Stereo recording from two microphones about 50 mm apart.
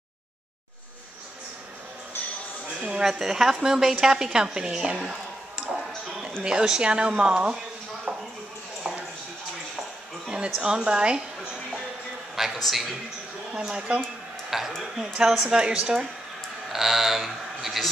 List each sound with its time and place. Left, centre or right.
2.8 s a woman's voice: centre
5.6 s music: centre
6.4 s speech: centre
8.8 s a sound: centre
10.6 s a woman's voice: centre
12.5 s speech: centre
13.5 s a woman's voice: centre
14.5 s speech: centre
15.2 s a woman's voice: centre
16.7 s speech: centre